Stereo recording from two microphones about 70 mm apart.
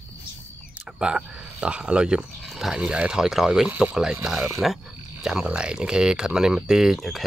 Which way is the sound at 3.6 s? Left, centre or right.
Centre.